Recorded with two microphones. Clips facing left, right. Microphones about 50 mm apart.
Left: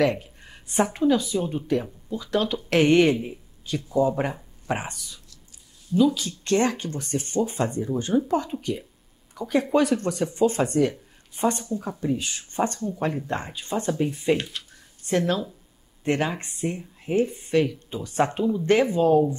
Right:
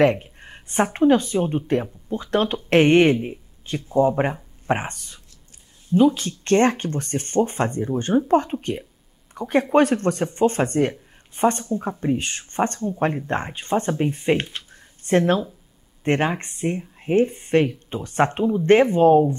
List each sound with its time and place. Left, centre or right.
0.0 s speech: right